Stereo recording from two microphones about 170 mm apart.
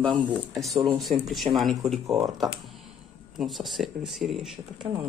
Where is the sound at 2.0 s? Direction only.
20° right (ahead or behind).